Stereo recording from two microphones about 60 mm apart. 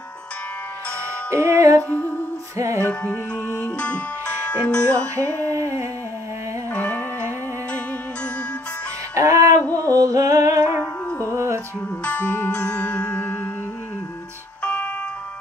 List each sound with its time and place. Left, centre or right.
1.3 s music: right
1.9 s music: left
2.5 s music: right
2.8 s music: left
4.9 s music: right
6.7 s music: left
9.1 s music: right
11.3 s music: right
12.0 s music: left
14.6 s music: left